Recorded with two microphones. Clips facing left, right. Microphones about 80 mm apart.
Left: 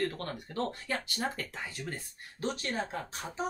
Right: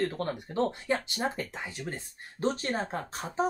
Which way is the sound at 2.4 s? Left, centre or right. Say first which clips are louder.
Right 4 dB; right.